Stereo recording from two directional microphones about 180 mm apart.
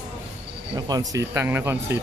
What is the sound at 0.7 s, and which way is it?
Speech, 20° right (ahead or behind).